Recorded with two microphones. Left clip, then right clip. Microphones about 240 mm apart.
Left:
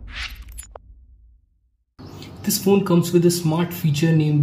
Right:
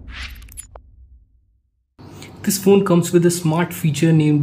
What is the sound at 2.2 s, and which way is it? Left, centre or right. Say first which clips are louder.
Speech: right 4 dB; centre.